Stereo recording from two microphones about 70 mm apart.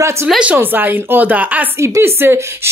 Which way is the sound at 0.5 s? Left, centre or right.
Right.